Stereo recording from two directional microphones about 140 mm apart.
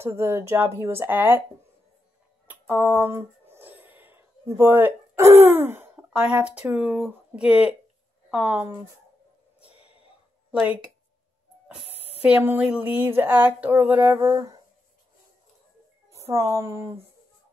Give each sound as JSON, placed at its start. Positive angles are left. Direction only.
{"t": 0.0, "sound": "speech", "side_deg": -20}
{"t": 2.4, "sound": "speech", "side_deg": -15}
{"t": 9.7, "sound": "a sound", "side_deg": 45}
{"t": 10.5, "sound": "speech", "side_deg": -10}
{"t": 12.0, "sound": "speech", "side_deg": -10}
{"t": 16.1, "sound": "a woman's voice", "side_deg": -20}